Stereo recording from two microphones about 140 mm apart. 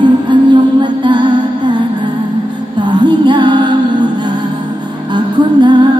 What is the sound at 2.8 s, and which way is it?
Music, 35° right (ahead or behind).